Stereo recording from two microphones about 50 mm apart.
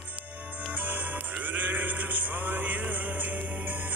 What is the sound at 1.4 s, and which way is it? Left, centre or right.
Music, right.